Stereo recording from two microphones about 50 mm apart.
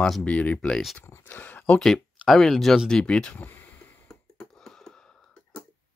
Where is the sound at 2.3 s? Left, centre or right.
Centre.